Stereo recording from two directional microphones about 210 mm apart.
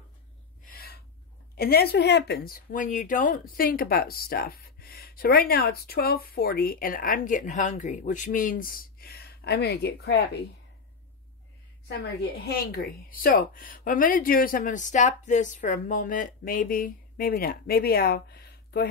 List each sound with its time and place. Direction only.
0.7 s gasp: 45° left (ahead or behind)
1.5 s speech: 45° left (ahead or behind)
12.0 s speech: 45° left (ahead or behind)